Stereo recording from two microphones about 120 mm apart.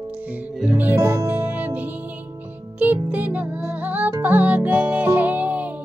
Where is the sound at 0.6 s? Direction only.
10° right (ahead or behind).